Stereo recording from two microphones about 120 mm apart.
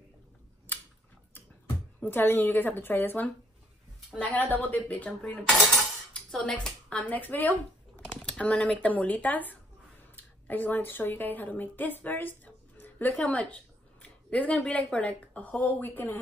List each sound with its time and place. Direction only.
2.0 s a woman's voice: 15° left (ahead or behind)
5.8 s dishes: 5° left (ahead or behind)
8.8 s a woman's voice: 15° left (ahead or behind)